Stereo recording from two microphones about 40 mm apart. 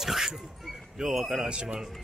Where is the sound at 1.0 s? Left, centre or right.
Centre.